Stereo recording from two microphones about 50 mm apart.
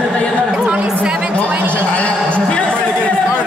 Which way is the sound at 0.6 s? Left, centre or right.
Right.